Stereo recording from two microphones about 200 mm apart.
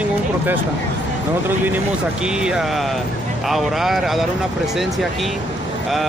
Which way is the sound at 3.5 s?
Centre (ahead or behind).